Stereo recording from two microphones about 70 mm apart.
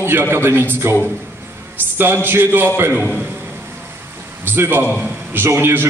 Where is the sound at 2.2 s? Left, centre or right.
Right.